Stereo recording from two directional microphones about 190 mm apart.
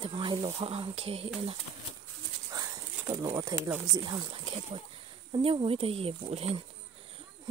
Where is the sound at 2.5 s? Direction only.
20° right (ahead or behind).